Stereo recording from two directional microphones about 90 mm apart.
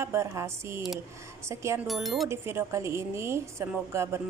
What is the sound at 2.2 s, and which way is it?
Speech, 30° right (ahead or behind).